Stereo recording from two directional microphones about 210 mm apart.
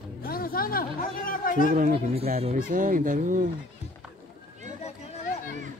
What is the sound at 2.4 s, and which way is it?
Speech, 35° right (ahead or behind).